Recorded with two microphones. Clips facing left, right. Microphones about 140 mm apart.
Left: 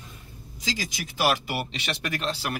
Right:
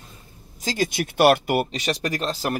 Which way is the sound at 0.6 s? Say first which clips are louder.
Right 8 dB; 55° right (ahead or behind).